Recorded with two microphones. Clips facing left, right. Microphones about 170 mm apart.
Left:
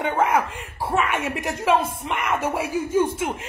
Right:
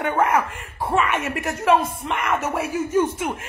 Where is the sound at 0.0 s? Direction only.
10° left (ahead or behind).